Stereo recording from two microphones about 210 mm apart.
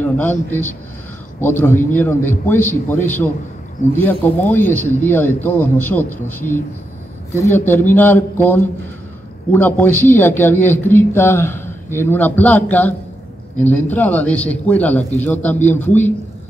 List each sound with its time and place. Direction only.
0.0 s a man's voice: 10° left (ahead or behind)